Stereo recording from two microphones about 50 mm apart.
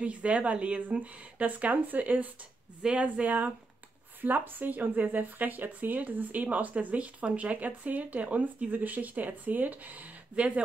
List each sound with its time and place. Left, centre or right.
0.0 s speech: right